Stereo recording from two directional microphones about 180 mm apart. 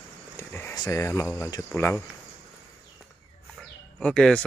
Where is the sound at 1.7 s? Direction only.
10° left (ahead or behind).